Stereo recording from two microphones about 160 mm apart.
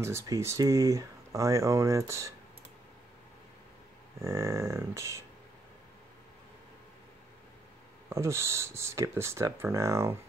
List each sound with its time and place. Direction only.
0.0 s speech: 15° right (ahead or behind)
4.2 s speech: 15° right (ahead or behind)
8.1 s speech: 15° right (ahead or behind)